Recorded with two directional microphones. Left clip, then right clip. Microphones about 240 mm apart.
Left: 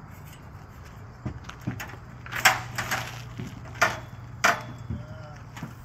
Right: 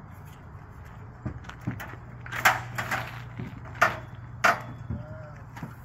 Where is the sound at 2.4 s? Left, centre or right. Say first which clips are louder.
Left 1 dB; centre.